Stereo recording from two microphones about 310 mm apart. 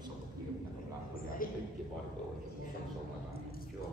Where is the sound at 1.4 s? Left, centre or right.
Left.